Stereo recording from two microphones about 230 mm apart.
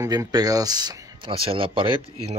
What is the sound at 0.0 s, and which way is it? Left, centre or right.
Speech, centre.